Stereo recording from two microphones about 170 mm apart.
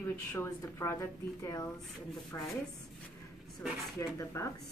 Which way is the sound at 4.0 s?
20° left (ahead or behind).